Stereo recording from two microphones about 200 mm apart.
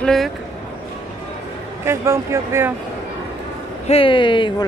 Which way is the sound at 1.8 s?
15° right (ahead or behind).